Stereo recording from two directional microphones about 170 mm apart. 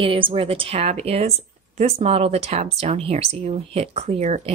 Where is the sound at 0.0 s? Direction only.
35° right (ahead or behind).